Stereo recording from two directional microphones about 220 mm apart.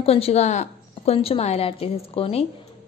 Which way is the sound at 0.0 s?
25° left (ahead or behind).